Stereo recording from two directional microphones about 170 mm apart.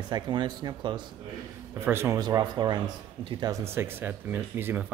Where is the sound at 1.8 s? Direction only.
15° right (ahead or behind).